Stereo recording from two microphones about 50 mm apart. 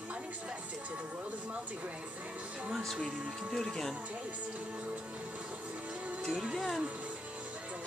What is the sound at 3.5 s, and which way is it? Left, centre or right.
Speech, centre.